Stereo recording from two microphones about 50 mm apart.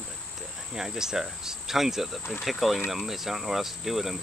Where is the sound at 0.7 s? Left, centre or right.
Centre.